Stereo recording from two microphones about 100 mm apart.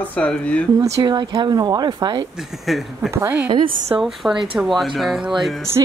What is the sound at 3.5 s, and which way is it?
Speech, 60° right (ahead or behind).